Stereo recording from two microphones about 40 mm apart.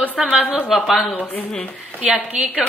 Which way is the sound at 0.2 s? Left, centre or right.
Centre.